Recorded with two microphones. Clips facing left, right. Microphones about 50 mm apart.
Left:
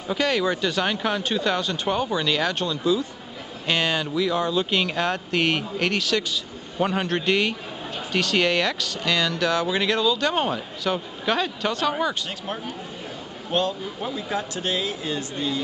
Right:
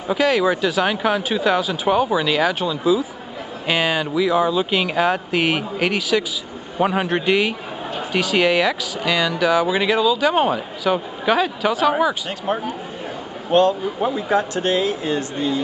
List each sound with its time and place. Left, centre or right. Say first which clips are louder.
0.1 s speech: right 5 dB; centre; by 14.4 s right
14.5 s speech: right 7 dB; right
15.3 s speech: right 5 dB; right